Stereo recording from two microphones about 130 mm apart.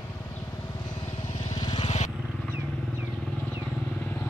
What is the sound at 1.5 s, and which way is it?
Vehicle, 35° left (ahead or behind).